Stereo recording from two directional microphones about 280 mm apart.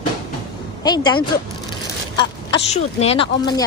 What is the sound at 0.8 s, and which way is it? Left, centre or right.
Speech, centre.